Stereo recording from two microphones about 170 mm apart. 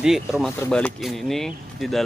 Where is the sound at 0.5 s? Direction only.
10° left (ahead or behind).